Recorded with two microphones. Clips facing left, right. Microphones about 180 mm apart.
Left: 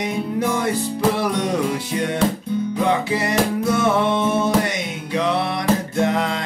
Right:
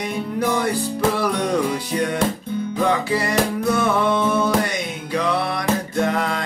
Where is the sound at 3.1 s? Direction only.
20° left (ahead or behind).